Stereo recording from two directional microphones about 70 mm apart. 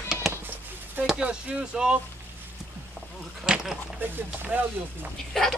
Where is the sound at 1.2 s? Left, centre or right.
Centre.